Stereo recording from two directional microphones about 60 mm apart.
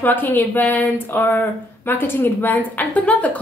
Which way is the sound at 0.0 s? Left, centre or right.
Left.